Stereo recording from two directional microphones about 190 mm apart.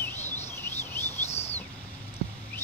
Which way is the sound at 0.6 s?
10° left (ahead or behind).